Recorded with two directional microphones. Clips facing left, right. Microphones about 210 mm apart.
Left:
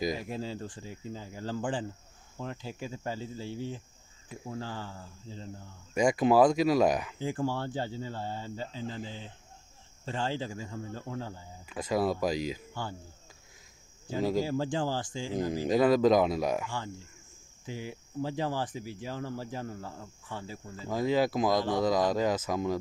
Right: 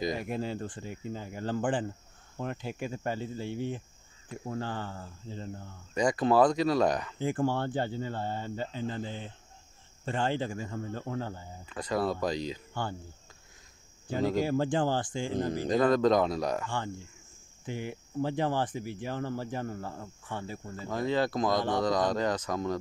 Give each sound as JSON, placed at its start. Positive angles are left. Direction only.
{"t": 0.1, "sound": "speech", "side_deg": -55}
{"t": 5.9, "sound": "speech", "side_deg": 10}
{"t": 7.2, "sound": "speech", "side_deg": -55}
{"t": 11.7, "sound": "speech", "side_deg": 10}
{"t": 12.8, "sound": "speech", "side_deg": -55}
{"t": 14.4, "sound": "speech", "side_deg": -60}
{"t": 15.5, "sound": "speech", "side_deg": 5}
{"t": 17.6, "sound": "speech", "side_deg": -60}
{"t": 20.7, "sound": "speech", "side_deg": 5}